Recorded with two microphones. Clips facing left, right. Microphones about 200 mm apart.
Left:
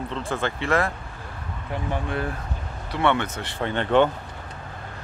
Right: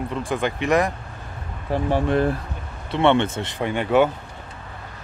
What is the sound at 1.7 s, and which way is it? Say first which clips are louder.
Speech: right 8 dB; 35° right (ahead or behind).